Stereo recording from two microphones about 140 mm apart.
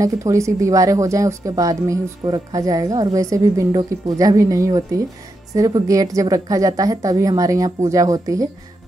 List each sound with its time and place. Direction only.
0.0 s speech: 20° right (ahead or behind)